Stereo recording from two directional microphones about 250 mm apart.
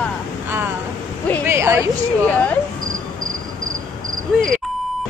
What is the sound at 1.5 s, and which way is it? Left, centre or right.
Speech, centre.